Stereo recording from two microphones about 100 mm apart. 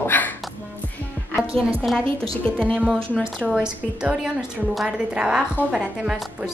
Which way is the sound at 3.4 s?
10° right (ahead or behind).